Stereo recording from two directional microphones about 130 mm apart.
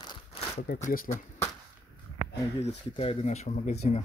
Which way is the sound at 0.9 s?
90° left.